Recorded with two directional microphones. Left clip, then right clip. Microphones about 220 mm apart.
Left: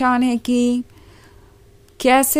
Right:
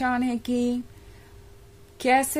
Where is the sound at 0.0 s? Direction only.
30° left (ahead or behind).